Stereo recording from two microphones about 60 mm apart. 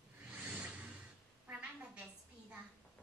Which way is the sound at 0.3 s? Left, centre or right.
Right.